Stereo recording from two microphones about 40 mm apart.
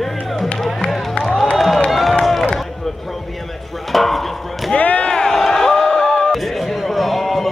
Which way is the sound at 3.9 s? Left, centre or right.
Centre.